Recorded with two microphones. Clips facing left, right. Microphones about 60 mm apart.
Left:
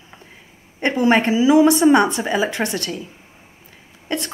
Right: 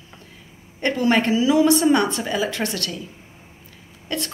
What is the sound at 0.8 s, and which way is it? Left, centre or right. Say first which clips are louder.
Speech: left 3 dB; left.